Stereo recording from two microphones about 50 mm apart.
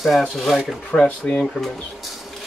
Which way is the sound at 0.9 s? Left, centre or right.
Centre.